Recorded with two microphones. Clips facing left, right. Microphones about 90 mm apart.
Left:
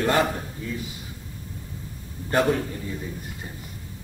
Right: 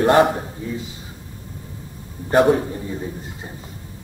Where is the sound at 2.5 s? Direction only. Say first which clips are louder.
Right 5 dB; 25° right (ahead or behind).